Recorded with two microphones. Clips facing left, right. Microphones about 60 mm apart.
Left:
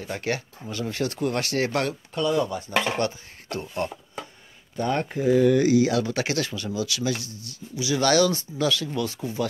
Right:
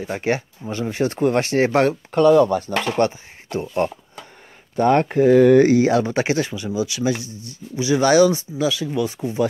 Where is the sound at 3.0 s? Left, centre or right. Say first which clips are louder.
Right 7 dB; right.